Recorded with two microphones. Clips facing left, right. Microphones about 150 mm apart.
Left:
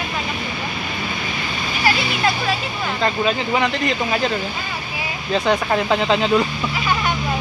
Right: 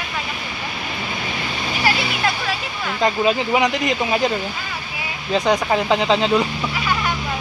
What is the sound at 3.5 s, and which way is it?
Speech, 15° right (ahead or behind).